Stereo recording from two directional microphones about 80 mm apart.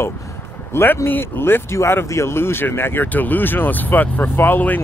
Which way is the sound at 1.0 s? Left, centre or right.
Left.